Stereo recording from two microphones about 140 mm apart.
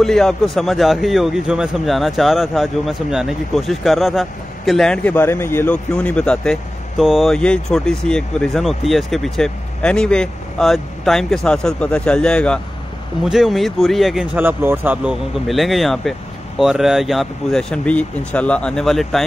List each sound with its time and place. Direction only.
0.0 s a man's voice: 5° left (ahead or behind)
14.3 s speech: 15° right (ahead or behind)
15.3 s a man's voice: centre (ahead or behind)